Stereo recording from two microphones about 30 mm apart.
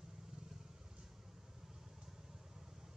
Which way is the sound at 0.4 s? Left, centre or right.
Centre.